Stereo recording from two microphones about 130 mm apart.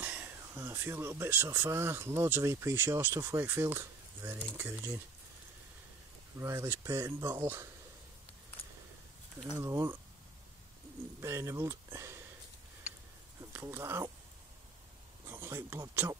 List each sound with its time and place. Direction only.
0.0 s speech: 15° right (ahead or behind)
6.4 s speech: 20° right (ahead or behind)
9.6 s speech: 25° right (ahead or behind)
11.1 s speech: 20° right (ahead or behind)
13.5 s speech: 20° right (ahead or behind)
15.2 s speech: 15° right (ahead or behind)